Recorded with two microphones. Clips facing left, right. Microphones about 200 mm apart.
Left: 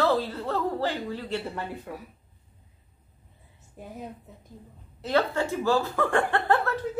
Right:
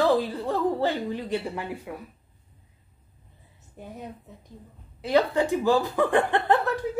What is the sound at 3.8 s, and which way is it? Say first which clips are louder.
Speech: even; centre (ahead or behind).